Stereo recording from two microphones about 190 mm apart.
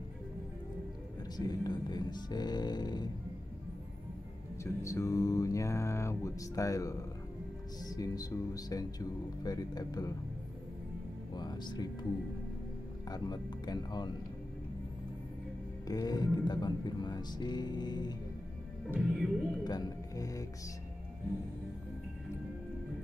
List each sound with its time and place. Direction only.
1.3 s speech: 20° left (ahead or behind)
4.8 s speech: 15° left (ahead or behind)
11.3 s speech: 20° left (ahead or behind)
13.1 s speech: 20° left (ahead or behind)
15.9 s speech: 20° left (ahead or behind)
18.9 s music: 5° right (ahead or behind)
19.6 s speech: 20° left (ahead or behind)